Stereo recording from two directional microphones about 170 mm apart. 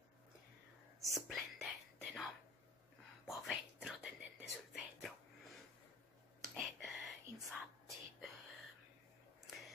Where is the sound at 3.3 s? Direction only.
Centre (ahead or behind).